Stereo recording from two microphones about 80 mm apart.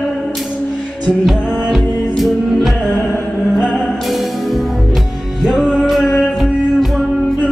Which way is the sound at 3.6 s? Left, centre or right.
Centre.